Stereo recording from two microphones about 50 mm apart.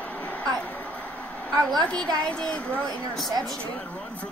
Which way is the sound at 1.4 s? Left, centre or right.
Centre.